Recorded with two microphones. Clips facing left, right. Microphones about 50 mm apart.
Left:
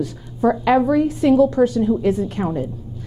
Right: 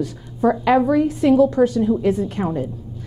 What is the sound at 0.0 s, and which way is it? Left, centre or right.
A woman's voice, centre.